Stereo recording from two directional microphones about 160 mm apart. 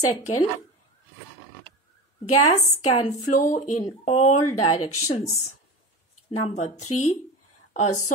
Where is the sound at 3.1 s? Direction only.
55° left (ahead or behind).